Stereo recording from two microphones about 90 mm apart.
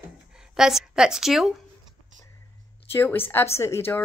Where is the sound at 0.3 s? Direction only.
5° right (ahead or behind).